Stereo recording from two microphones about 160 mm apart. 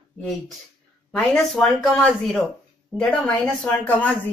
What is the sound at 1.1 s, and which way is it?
A woman's voice, 5° left (ahead or behind).